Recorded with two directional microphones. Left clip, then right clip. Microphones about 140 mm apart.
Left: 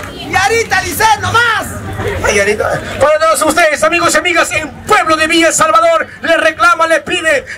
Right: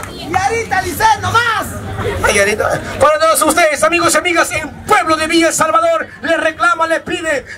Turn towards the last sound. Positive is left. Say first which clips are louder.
# left 5 dB
turn(degrees=5)  # may be behind; listen again after turning